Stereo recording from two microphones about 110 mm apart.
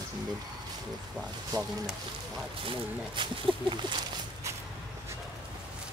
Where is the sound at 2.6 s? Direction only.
45° right (ahead or behind).